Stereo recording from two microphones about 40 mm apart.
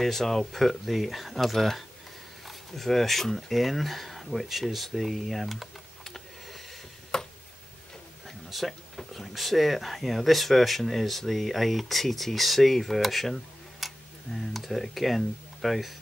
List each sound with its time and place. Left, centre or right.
0.0 s speech: centre
7.1 s tick-tock: centre
8.5 s speech: centre